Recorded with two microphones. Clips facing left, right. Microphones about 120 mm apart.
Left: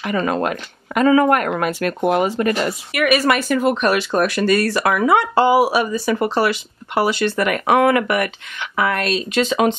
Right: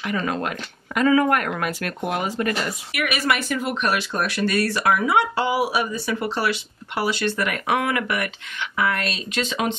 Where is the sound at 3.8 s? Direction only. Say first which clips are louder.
Left 6 dB; 55° left (ahead or behind).